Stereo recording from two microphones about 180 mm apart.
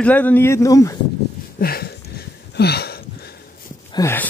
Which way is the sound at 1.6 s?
60° left (ahead or behind).